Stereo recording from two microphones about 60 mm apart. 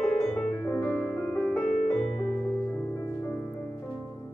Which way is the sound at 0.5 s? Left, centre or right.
Centre.